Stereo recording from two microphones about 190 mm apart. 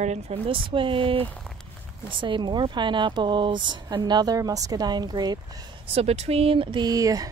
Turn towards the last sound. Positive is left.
turn(degrees=-20)  # may be behind; listen again after turning